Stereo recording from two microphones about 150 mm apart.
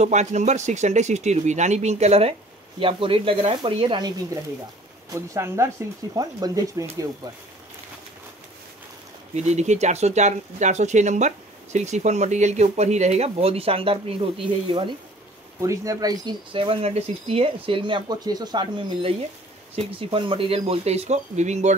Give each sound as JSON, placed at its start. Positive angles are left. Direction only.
{"t": 0.0, "sound": "speech", "side_deg": -50}
{"t": 5.1, "sound": "speech", "side_deg": -20}
{"t": 9.3, "sound": "speech", "side_deg": -50}
{"t": 15.6, "sound": "speech", "side_deg": -20}